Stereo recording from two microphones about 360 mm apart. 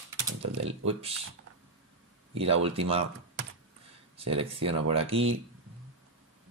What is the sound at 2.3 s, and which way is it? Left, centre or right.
Speech, centre.